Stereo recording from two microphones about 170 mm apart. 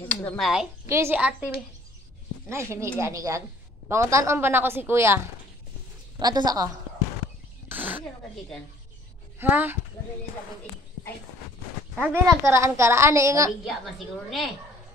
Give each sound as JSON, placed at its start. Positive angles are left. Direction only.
{"t": 0.1, "sound": "a sound", "side_deg": 10}
{"t": 0.8, "sound": "a woman's voice", "side_deg": -15}
{"t": 2.5, "sound": "a woman's voice", "side_deg": -15}
{"t": 7.6, "sound": "a sound", "side_deg": -10}
{"t": 9.4, "sound": "a woman's voice", "side_deg": -10}
{"t": 11.9, "sound": "a woman's voice", "side_deg": -10}
{"t": 13.7, "sound": "a woman's voice", "side_deg": 0}